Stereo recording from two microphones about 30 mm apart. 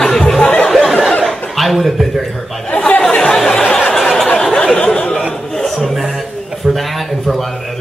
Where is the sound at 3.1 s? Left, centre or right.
Centre.